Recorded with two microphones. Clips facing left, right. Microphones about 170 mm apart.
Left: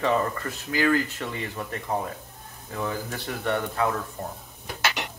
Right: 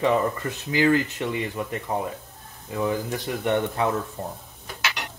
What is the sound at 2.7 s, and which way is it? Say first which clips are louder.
Speech: right 5 dB; 20° right (ahead or behind).